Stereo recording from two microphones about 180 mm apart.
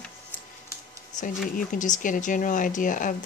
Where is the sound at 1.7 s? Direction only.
45° left (ahead or behind).